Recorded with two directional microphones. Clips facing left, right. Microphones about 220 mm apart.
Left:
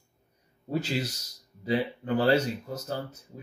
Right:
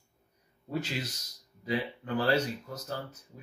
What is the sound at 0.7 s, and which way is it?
A man's voice, 30° left (ahead or behind).